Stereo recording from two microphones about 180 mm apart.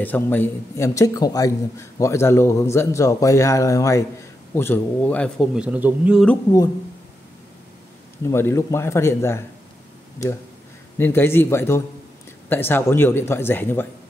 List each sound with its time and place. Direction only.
0.0 s a man's voice: 10° left (ahead or behind); by 6.2 s 10° right (ahead or behind)
8.3 s a man's voice: 15° left (ahead or behind)
11.0 s a man's voice: 15° left (ahead or behind)